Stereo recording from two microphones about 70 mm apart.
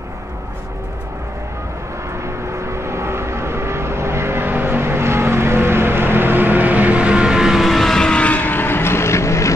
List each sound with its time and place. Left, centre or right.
2.2 s vehicle: right; by 9.5 s left